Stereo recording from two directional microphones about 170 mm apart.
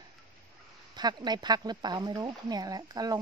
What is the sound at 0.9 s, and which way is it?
Speech, 25° right (ahead or behind).